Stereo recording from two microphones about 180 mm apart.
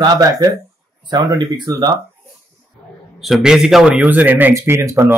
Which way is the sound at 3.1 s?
Centre (ahead or behind).